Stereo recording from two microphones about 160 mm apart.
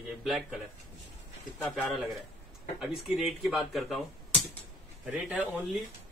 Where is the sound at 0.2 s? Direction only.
Centre (ahead or behind).